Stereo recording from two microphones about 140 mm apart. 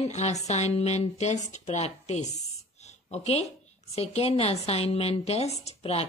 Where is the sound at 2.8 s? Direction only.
50° left (ahead or behind).